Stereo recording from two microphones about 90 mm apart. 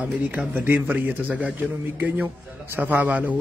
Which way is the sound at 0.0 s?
15° right (ahead or behind).